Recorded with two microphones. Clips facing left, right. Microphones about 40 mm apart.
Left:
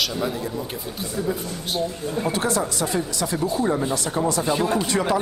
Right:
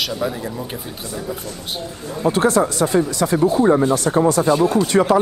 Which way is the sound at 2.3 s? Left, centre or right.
Right.